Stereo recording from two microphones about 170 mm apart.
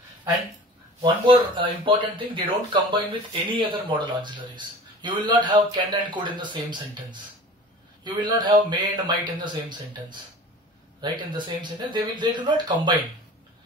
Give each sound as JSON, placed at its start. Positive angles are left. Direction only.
{"t": 1.0, "sound": "speech", "side_deg": -30}